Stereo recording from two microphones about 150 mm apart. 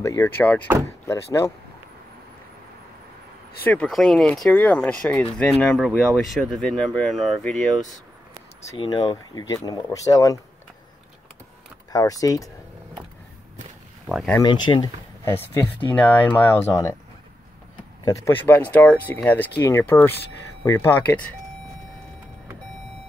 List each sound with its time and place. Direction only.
0.0 s speech: 20° left (ahead or behind)
3.6 s speech: 5° left (ahead or behind)
8.7 s speech: 30° left (ahead or behind)
11.9 s speech: 25° left (ahead or behind)
14.0 s speech: 5° right (ahead or behind)
14.4 s speech: 30° left (ahead or behind)
15.2 s speech: 15° left (ahead or behind)
18.0 s speech: 25° left (ahead or behind)
18.4 s speech: 10° left (ahead or behind)